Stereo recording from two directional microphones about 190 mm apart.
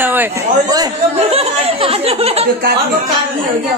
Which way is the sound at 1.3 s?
30° right (ahead or behind).